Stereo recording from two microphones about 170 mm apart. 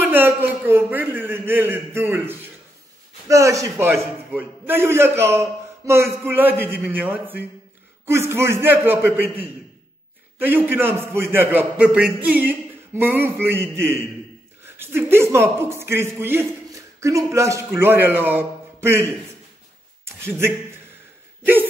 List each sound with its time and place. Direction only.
0.0 s a man's voice: 10° right (ahead or behind)
20.2 s a man's voice: 15° right (ahead or behind)